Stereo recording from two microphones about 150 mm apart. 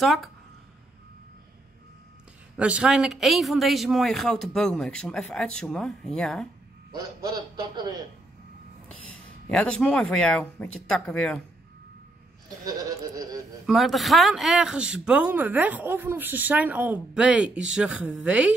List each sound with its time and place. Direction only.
0.0 s speech: centre (ahead or behind)
2.5 s speech: 5° right (ahead or behind)
6.9 s a man's voice: 25° right (ahead or behind)
8.8 s a man's voice: 5° left (ahead or behind)
12.6 s speech: 25° right (ahead or behind)
13.7 s speech: centre (ahead or behind)